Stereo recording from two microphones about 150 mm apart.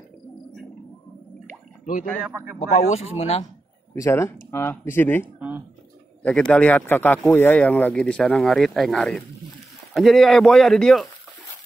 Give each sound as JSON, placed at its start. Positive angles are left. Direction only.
{"t": 2.6, "sound": "speech", "side_deg": 50}
{"t": 3.9, "sound": "speech", "side_deg": 20}
{"t": 6.2, "sound": "speech", "side_deg": 5}